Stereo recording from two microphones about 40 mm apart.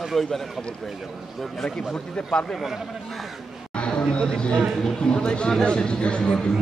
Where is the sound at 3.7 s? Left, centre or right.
Left.